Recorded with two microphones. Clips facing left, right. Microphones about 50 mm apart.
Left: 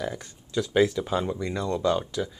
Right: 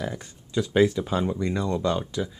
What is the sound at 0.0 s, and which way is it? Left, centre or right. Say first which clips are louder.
Speech: even; centre.